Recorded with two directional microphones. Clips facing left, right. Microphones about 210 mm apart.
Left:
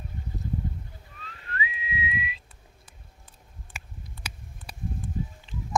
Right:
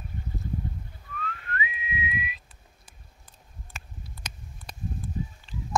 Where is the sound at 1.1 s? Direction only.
30° left (ahead or behind).